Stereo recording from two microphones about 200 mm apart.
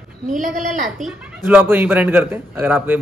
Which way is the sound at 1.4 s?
10° right (ahead or behind).